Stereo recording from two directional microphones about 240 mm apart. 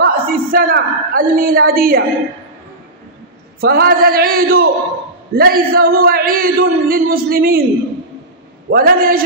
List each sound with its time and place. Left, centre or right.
0.0 s a woman's voice: right
3.6 s speech: right
8.6 s speech: right